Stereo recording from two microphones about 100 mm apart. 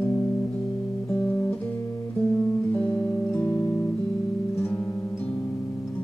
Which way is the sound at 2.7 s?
15° left (ahead or behind).